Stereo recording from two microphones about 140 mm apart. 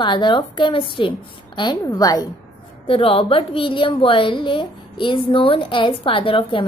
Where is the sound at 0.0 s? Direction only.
35° left (ahead or behind).